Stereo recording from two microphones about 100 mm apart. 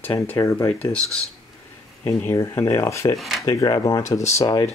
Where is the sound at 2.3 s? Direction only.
25° left (ahead or behind).